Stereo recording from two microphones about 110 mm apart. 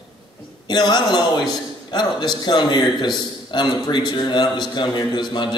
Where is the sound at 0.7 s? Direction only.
40° left (ahead or behind).